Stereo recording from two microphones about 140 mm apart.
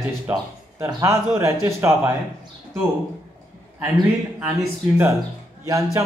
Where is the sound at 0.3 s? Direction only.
15° right (ahead or behind).